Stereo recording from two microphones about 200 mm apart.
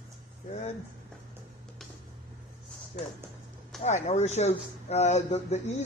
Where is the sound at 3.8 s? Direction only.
35° left (ahead or behind).